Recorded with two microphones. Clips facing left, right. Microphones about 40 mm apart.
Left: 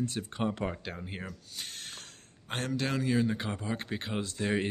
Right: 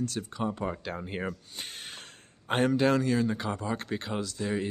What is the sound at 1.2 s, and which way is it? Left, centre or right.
Speech, right.